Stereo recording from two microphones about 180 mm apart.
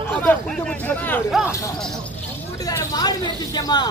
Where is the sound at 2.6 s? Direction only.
20° left (ahead or behind).